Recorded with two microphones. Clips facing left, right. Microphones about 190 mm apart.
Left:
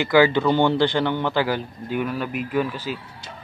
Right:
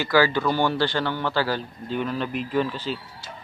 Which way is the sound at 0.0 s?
20° left (ahead or behind).